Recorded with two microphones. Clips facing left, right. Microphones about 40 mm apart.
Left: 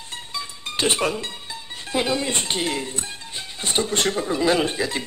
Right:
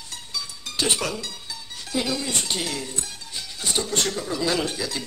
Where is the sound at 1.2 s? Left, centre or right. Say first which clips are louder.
Left 3 dB; left.